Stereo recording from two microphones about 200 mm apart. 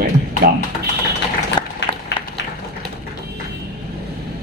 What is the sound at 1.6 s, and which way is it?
Applause, 20° left (ahead or behind).